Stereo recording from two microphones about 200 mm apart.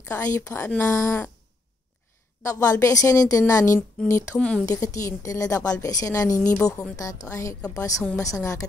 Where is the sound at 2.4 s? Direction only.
15° left (ahead or behind).